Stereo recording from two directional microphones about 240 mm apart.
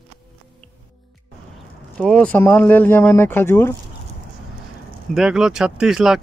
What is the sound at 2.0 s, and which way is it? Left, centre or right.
Speech, centre.